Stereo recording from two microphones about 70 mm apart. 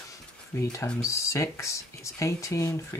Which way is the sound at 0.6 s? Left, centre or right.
Left.